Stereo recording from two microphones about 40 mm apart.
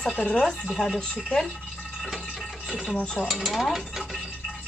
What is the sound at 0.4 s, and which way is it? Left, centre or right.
Speech, centre.